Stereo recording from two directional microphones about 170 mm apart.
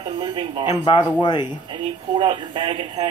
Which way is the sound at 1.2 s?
25° left (ahead or behind).